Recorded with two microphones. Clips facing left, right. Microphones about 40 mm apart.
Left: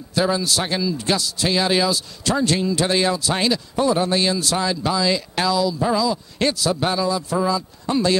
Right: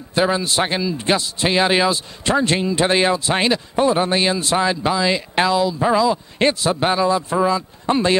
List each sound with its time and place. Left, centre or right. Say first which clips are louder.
0.1 s a man's voice: right 2 dB; right